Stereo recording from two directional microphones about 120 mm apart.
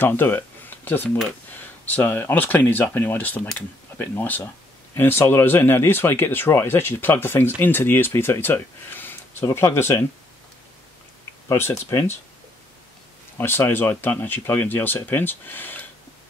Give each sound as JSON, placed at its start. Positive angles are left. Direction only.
{"t": 0.0, "sound": "a sound", "side_deg": 15}
{"t": 1.5, "sound": "speech", "side_deg": 15}
{"t": 11.5, "sound": "speech", "side_deg": 20}
{"t": 13.4, "sound": "speech", "side_deg": 20}